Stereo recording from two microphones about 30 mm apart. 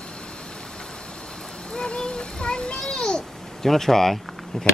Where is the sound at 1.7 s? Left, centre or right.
Left.